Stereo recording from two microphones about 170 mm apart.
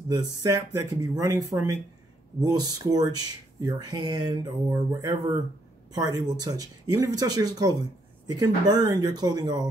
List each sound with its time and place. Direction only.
0.1 s speech: 20° right (ahead or behind)